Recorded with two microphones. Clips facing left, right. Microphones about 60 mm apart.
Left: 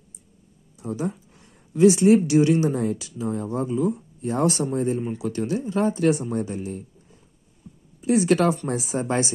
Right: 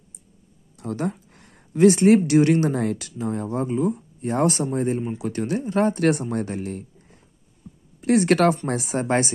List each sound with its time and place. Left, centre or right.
0.7 s a sound: right
1.7 s speech: right
3.1 s speech: right